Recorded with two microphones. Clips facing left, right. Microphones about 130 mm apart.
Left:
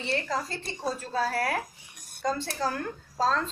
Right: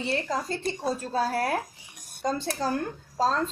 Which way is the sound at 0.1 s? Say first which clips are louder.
Even; 20° right (ahead or behind).